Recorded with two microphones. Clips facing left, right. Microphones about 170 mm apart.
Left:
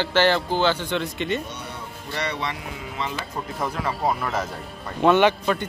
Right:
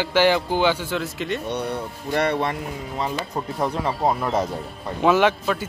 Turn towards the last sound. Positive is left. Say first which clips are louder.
# left 1 dB
turn(degrees=0)  # may be behind; listen again after turning